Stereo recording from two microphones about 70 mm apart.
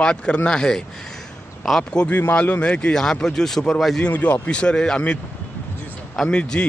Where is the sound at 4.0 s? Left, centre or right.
Left.